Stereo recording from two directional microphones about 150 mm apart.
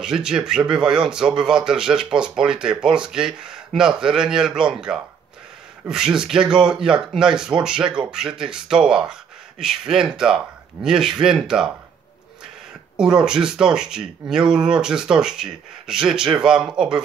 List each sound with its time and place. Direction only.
0.0 s speech: 5° right (ahead or behind)
12.9 s speech: 5° right (ahead or behind)